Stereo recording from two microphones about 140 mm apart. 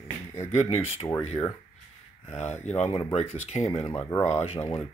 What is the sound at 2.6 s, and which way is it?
Speech, 50° left (ahead or behind).